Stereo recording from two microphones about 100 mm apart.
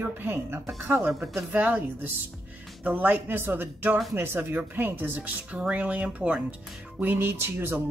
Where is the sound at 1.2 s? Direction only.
10° right (ahead or behind).